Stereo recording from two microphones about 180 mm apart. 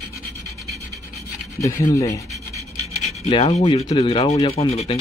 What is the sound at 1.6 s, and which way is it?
Rub, 15° left (ahead or behind).